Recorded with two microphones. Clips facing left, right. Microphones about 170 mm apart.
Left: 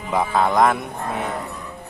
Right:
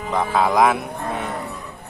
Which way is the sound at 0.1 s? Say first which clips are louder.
Even; centre (ahead or behind).